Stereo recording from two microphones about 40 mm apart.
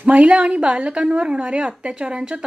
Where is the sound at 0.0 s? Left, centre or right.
Right.